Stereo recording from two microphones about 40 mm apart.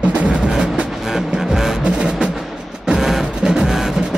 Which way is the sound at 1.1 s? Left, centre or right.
Centre.